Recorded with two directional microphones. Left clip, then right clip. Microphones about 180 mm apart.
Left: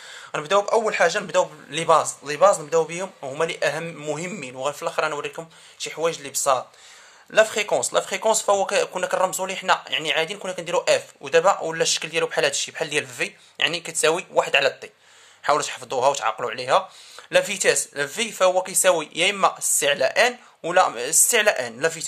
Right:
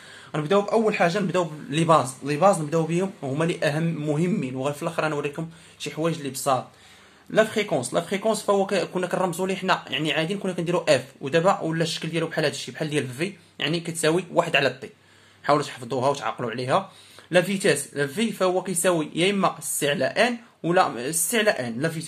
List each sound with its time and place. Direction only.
0.3 s speech: 40° left (ahead or behind)